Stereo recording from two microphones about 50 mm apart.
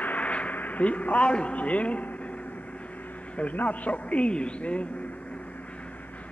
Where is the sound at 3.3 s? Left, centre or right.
Left.